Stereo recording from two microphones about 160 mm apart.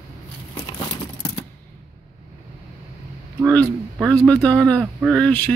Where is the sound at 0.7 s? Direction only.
25° left (ahead or behind).